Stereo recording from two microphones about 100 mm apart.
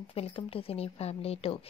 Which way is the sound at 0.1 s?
70° left (ahead or behind).